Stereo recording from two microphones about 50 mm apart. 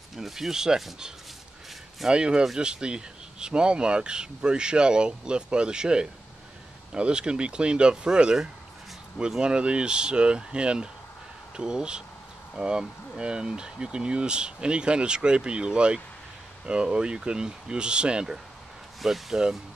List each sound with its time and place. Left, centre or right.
0.1 s speech: centre
18.9 s speech: centre